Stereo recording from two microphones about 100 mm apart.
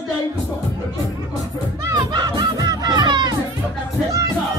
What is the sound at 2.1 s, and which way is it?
Crowd, 40° right (ahead or behind).